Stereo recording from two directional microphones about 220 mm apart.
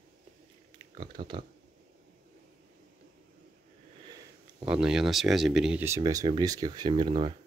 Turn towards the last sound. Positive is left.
turn(degrees=-20)  # may be behind; listen again after turning